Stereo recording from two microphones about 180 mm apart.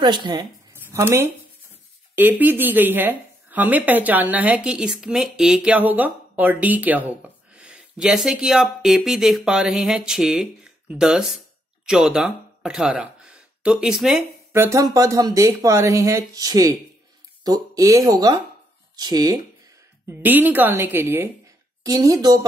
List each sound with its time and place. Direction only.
0.0 s a woman's voice: 25° right (ahead or behind)
0.7 s speech: 10° right (ahead or behind)
14.5 s a woman's voice: 15° right (ahead or behind)
20.1 s a woman's voice: 10° right (ahead or behind)